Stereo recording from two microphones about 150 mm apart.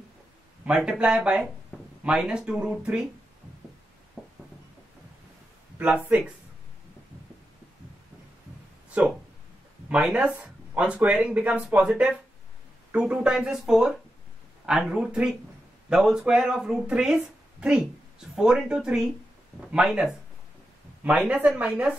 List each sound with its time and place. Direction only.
0.7 s speech: 5° right (ahead or behind)
4.2 s music: 5° right (ahead or behind)
9.8 s speech: 5° right (ahead or behind)